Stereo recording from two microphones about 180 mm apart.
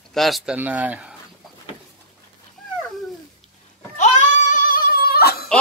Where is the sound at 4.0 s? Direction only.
45° left (ahead or behind).